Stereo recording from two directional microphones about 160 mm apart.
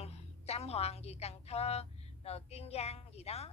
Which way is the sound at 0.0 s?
40° left (ahead or behind).